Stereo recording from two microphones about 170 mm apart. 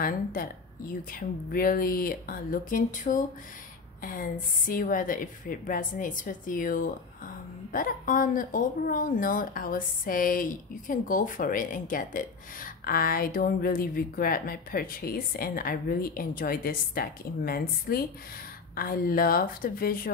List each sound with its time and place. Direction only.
0.0 s a woman's voice: 55° left (ahead or behind)